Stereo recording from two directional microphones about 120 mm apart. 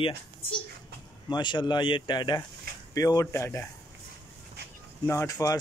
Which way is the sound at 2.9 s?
25° left (ahead or behind).